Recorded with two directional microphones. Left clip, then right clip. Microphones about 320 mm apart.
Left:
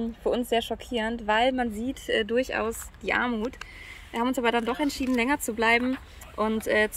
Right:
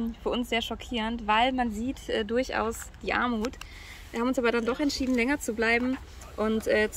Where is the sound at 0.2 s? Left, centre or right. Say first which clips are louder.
Left 4 dB; centre.